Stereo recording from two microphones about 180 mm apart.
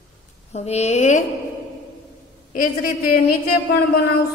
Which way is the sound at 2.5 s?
50° left (ahead or behind).